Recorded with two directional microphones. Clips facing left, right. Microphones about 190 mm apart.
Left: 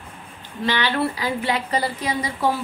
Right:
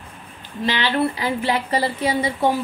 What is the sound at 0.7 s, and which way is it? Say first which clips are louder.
Speech: right 1 dB; 20° right (ahead or behind).